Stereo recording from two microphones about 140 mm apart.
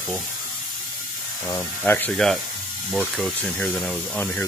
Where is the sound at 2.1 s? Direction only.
Centre (ahead or behind).